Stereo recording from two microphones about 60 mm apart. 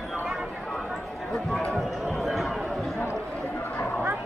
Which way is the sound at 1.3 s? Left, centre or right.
Centre.